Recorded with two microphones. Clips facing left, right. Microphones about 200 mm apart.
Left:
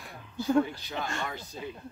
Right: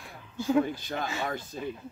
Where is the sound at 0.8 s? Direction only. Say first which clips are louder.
Right 2 dB; 50° right (ahead or behind).